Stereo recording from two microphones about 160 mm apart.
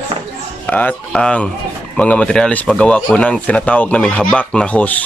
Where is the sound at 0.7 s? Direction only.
10° left (ahead or behind).